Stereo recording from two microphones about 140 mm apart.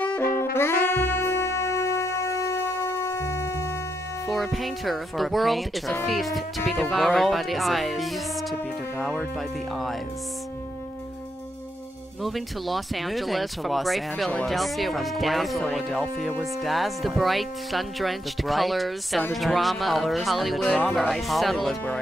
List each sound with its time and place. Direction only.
0.0 s saxophone: 15° left (ahead or behind)
4.3 s speech: centre (ahead or behind)
12.2 s speech: centre (ahead or behind)